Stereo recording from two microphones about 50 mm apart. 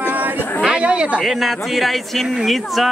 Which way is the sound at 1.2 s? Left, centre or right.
Centre.